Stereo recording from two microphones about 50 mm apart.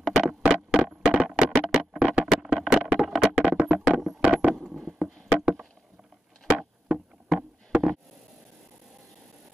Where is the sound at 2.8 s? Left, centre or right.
Right.